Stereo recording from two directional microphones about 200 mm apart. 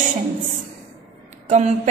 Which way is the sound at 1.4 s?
35° right (ahead or behind).